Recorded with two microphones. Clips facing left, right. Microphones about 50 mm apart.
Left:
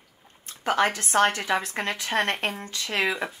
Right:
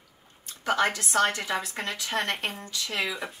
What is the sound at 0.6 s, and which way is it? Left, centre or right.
A woman's voice, left.